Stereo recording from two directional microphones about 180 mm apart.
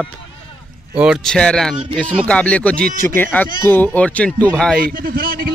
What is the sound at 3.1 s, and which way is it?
Speech, 10° left (ahead or behind).